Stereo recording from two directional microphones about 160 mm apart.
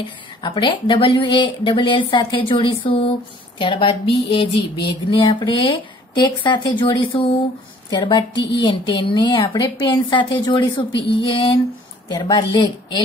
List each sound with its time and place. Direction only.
0.0 s a woman's voice: 30° left (ahead or behind)